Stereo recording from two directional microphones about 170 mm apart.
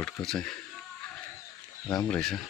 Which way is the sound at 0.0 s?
5° left (ahead or behind).